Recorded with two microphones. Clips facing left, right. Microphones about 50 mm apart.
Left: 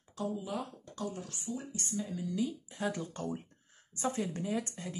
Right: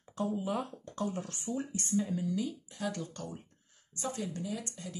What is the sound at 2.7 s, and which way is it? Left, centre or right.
Speech, left.